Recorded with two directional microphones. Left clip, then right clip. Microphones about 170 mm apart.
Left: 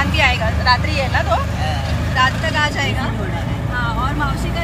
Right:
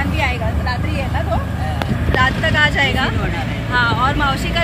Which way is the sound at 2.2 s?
25° right (ahead or behind).